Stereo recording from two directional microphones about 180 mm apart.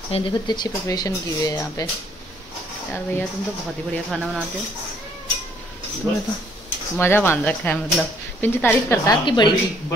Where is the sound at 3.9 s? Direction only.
5° left (ahead or behind).